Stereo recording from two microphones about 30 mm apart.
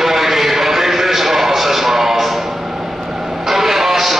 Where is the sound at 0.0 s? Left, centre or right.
Centre.